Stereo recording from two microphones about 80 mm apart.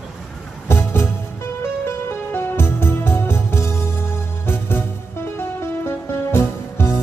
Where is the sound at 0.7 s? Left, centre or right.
Left.